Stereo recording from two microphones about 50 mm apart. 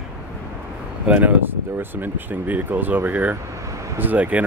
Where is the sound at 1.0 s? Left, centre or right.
Right.